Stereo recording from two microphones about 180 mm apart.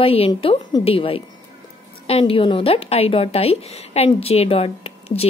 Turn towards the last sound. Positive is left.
turn(degrees=35)  # may be behind; listen again after turning